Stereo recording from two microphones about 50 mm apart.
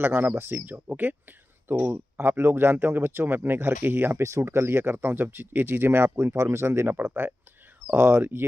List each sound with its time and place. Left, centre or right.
0.0 s speech: right
4.2 s speech: right